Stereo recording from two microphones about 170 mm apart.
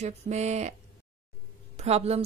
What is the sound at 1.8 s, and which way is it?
Speech, 40° right (ahead or behind).